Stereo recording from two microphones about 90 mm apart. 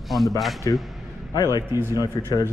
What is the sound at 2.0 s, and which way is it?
Speech, 45° left (ahead or behind).